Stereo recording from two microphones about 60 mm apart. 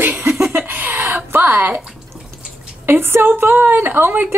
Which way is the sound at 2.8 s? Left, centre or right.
Right.